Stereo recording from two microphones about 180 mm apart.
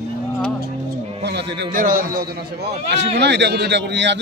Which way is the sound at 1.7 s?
50° right (ahead or behind).